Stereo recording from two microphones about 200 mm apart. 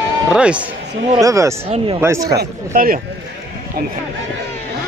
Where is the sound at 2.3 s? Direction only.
45° right (ahead or behind).